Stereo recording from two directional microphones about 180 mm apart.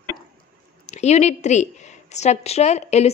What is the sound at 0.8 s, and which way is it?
A woman's voice, 40° left (ahead or behind).